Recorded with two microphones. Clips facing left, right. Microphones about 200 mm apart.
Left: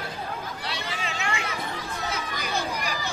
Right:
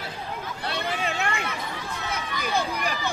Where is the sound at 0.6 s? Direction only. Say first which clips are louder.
Right 4 dB; 55° right (ahead or behind).